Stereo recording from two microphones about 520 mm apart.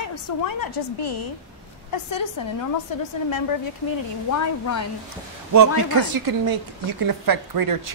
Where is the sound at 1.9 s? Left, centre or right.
Left.